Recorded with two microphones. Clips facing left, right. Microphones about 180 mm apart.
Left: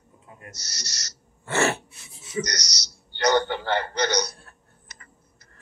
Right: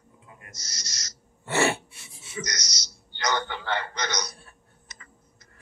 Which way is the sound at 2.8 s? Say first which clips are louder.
Left 7 dB; 65° left (ahead or behind).